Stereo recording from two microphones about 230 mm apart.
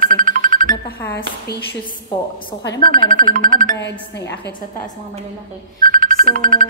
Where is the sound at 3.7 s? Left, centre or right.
Left.